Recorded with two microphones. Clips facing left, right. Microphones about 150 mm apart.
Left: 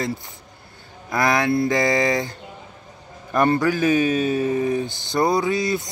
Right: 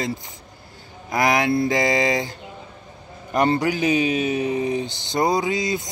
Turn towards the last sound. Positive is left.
turn(degrees=-20)  # may be behind; listen again after turning